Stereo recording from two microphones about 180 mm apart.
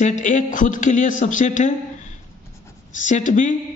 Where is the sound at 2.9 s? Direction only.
45° left (ahead or behind).